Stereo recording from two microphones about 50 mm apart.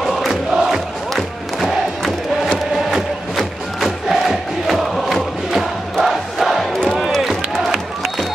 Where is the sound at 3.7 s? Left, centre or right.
Centre.